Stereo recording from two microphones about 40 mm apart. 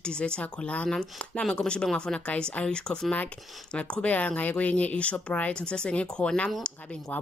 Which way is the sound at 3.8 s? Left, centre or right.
Left.